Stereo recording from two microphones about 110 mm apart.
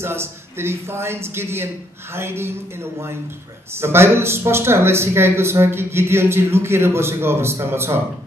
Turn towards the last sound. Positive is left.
turn(degrees=-20)  # may be behind; listen again after turning